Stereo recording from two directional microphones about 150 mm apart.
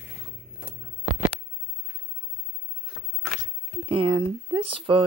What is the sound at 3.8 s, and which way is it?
Speech, 35° right (ahead or behind).